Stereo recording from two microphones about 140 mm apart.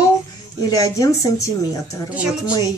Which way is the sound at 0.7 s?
25° left (ahead or behind).